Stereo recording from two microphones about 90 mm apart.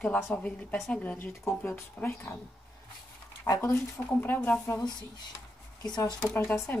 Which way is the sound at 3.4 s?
35° left (ahead or behind).